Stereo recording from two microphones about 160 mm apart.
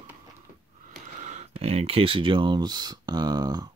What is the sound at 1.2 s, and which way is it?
Speech, 45° right (ahead or behind).